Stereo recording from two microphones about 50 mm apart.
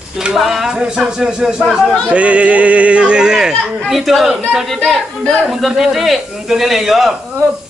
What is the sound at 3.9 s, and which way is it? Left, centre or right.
Speech, centre.